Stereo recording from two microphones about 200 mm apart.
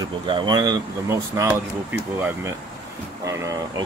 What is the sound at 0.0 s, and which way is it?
Speech, 25° right (ahead or behind).